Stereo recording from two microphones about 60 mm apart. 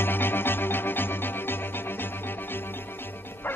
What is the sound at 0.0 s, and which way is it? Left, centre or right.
Music, left.